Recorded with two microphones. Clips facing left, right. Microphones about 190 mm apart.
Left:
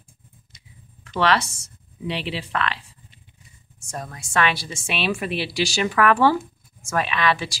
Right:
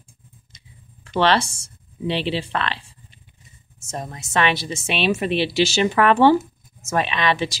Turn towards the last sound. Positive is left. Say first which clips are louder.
# right 1 dB
turn(degrees=-20)  # may be behind; listen again after turning